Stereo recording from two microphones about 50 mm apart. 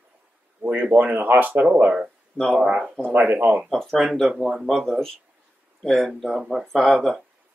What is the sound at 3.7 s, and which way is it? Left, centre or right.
Speech, centre.